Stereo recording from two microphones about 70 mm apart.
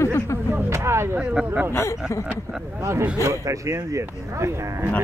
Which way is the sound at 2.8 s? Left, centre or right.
Right.